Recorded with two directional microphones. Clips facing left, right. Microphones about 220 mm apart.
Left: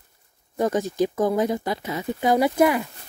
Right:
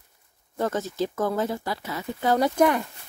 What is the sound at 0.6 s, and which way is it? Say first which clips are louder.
Speech: left 4 dB; 15° left (ahead or behind).